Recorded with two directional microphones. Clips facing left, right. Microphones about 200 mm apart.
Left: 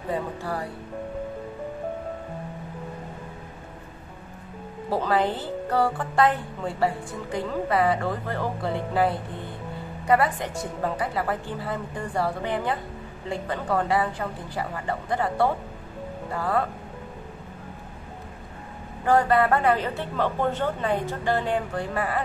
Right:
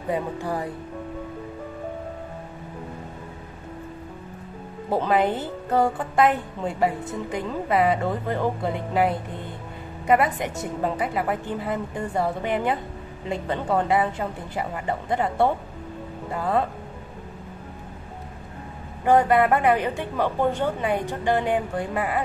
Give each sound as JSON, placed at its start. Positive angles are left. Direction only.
{"t": 0.1, "sound": "speech", "side_deg": -15}
{"t": 4.8, "sound": "speech", "side_deg": -20}
{"t": 19.0, "sound": "speech", "side_deg": -20}